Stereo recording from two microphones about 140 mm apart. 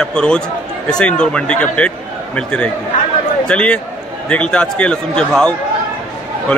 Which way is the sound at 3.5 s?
10° left (ahead or behind).